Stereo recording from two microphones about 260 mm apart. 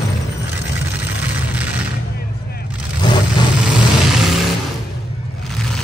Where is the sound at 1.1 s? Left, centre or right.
Centre.